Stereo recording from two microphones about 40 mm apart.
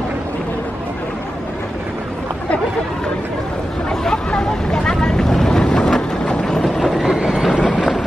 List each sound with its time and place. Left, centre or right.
3.9 s hubbub: centre
4.3 s boat: centre
6.8 s train: centre
7.2 s train: right
7.5 s vehicle: left